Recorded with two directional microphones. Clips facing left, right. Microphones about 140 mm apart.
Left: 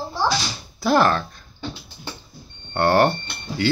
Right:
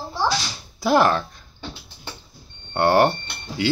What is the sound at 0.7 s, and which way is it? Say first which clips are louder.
Speech: even; 15° right (ahead or behind).